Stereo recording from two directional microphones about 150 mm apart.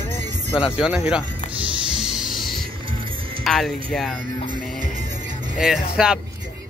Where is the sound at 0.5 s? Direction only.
5° right (ahead or behind).